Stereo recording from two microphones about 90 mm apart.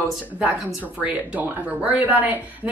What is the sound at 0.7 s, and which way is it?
Speech, 10° right (ahead or behind).